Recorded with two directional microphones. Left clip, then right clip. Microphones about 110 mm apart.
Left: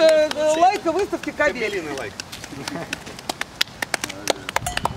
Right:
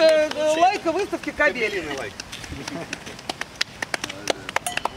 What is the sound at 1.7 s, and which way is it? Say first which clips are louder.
Speech: left 1 dB; 15° left (ahead or behind).